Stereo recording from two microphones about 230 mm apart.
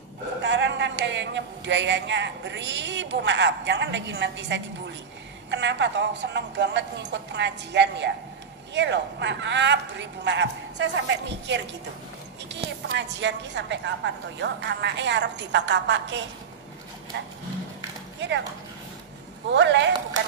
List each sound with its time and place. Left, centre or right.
0.4 s a woman's voice: right
12.8 s a woman's voice: right
18.2 s a woman's voice: right
19.4 s a woman's voice: right